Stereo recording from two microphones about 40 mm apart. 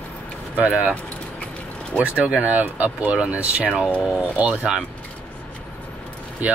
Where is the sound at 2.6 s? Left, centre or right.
Right.